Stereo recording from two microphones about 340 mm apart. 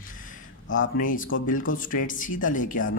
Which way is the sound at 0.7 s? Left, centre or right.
Left.